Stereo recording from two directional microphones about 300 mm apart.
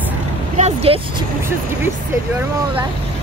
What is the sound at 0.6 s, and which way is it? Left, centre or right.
Speech, right.